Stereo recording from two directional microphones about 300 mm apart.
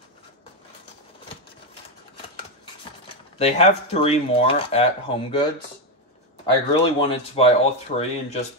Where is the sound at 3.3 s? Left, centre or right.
Centre.